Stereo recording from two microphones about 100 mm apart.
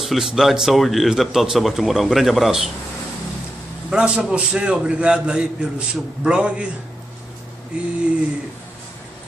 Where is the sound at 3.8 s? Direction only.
10° right (ahead or behind).